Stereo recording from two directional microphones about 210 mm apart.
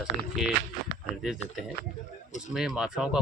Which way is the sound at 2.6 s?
5° right (ahead or behind).